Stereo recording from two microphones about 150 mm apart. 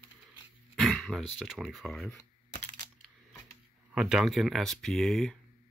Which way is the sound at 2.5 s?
50° left (ahead or behind).